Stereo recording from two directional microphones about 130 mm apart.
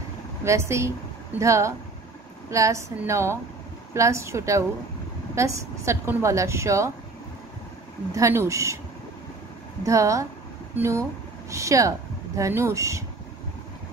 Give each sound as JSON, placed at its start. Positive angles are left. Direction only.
{"t": 0.4, "sound": "a woman's voice", "side_deg": -20}
{"t": 8.1, "sound": "a woman's voice", "side_deg": -20}
{"t": 9.8, "sound": "a woman's voice", "side_deg": -25}